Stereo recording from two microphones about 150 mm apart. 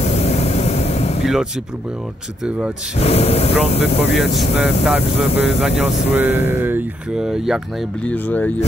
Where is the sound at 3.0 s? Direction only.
45° left (ahead or behind).